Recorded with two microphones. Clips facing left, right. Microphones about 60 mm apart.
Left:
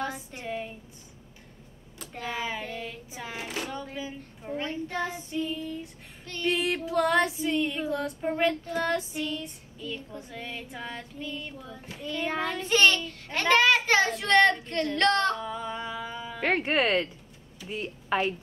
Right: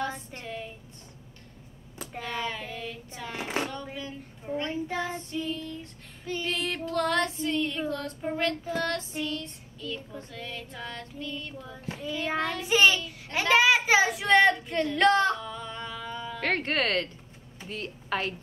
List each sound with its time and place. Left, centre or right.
0.0 s speech: centre
2.2 s female singing: centre
3.4 s a sound: right
3.9 s speech: centre
5.0 s female singing: centre
11.6 s a child's voice: centre
15.4 s female singing: centre
17.6 s a woman's voice: centre